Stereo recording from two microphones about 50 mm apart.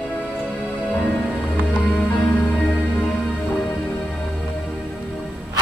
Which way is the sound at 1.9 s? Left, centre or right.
Centre.